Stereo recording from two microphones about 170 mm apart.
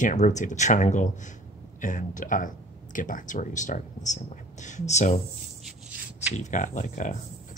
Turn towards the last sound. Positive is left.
turn(degrees=45)  # may be behind; listen again after turning